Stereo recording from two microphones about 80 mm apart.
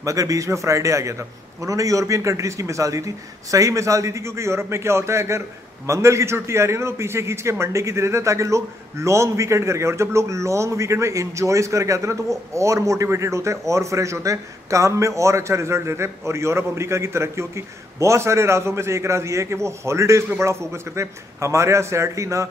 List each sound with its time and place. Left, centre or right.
0.0 s a man's voice: right